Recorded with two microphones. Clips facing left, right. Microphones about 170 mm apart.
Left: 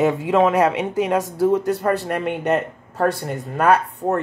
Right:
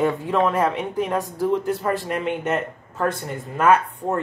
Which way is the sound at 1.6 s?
70° left (ahead or behind).